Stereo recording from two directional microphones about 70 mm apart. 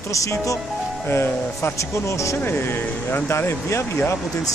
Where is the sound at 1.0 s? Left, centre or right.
Left.